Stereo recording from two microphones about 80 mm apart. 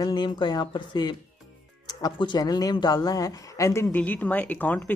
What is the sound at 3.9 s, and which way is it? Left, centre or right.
Speech, left.